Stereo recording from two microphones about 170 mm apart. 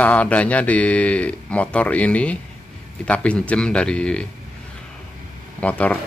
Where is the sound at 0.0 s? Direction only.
10° left (ahead or behind).